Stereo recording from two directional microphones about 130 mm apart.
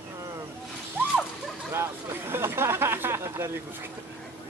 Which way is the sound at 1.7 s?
20° right (ahead or behind).